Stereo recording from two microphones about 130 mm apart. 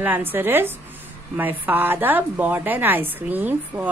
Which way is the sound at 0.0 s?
15° right (ahead or behind).